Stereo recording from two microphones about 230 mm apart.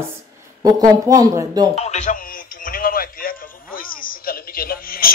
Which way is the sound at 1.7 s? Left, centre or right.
Left.